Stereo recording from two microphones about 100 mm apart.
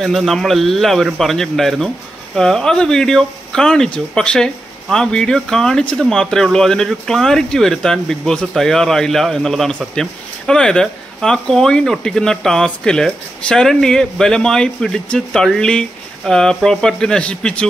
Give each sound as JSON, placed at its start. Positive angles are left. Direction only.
{"t": 0.0, "sound": "speech", "side_deg": 0}